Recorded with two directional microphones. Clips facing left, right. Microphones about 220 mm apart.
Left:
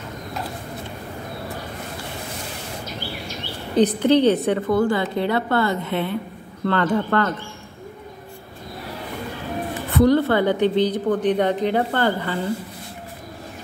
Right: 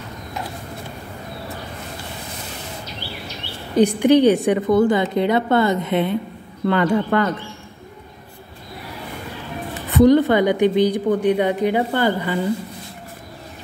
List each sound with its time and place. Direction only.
3.7 s a woman's voice: 10° right (ahead or behind)
9.8 s a woman's voice: 20° right (ahead or behind)